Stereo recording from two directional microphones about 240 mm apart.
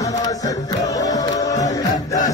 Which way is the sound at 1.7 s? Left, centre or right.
Centre.